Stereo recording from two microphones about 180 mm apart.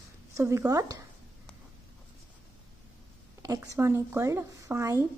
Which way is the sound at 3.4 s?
20° right (ahead or behind).